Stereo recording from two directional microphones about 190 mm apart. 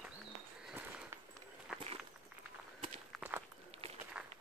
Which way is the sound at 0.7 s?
10° right (ahead or behind).